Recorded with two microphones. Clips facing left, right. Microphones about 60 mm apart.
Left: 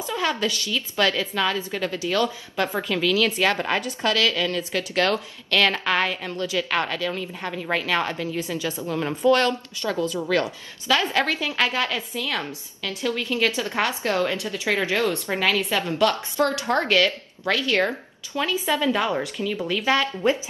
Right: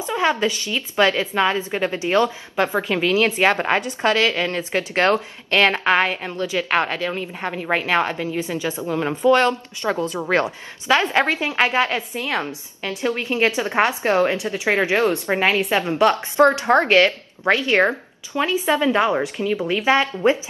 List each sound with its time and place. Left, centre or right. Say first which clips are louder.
0.0 s a woman's voice: right 5 dB; right